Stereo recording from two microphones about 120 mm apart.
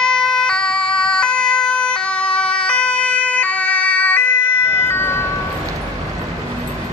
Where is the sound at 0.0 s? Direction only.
5° left (ahead or behind).